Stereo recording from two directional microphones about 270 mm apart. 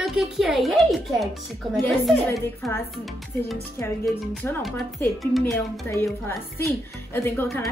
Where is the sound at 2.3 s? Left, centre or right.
Centre.